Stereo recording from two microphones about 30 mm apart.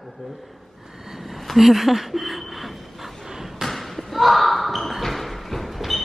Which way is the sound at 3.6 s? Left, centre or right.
Centre.